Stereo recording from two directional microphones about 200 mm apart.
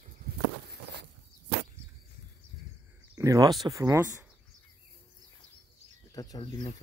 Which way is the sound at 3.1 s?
15° right (ahead or behind).